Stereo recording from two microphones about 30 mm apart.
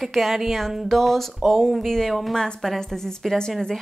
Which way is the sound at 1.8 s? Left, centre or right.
Centre.